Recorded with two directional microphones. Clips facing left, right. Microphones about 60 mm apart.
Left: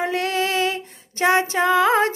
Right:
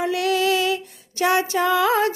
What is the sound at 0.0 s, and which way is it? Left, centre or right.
Female singing, left.